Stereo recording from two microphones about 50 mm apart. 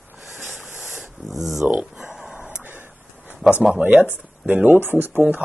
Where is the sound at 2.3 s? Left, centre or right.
Right.